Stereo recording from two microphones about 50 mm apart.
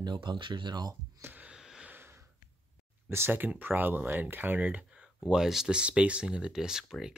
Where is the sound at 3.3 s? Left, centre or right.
Right.